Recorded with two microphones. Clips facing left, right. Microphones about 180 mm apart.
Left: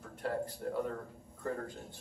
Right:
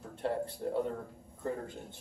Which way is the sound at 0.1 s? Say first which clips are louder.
Right 2 dB; 30° right (ahead or behind).